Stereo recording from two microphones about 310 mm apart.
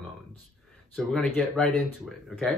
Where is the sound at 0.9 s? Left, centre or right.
Centre.